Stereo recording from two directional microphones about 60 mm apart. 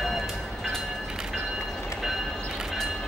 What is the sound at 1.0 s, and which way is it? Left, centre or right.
Train, centre.